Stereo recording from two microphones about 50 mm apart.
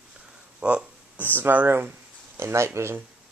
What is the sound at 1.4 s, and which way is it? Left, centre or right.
Speech, right.